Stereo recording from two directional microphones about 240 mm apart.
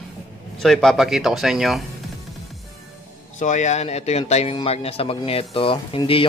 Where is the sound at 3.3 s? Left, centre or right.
Left.